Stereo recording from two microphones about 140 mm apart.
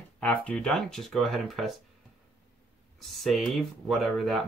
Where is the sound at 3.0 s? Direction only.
Centre (ahead or behind).